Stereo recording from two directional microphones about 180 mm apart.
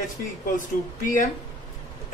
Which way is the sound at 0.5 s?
45° left (ahead or behind).